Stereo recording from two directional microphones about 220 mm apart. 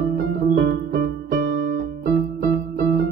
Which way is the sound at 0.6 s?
45° right (ahead or behind).